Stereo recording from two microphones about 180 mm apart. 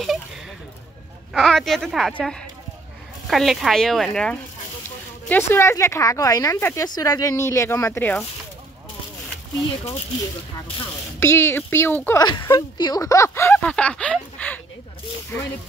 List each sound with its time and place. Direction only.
0.0 s a sound: centre (ahead or behind)
1.3 s a woman's voice: centre (ahead or behind)
11.1 s speech: 15° left (ahead or behind)
12.2 s speech: 25° left (ahead or behind)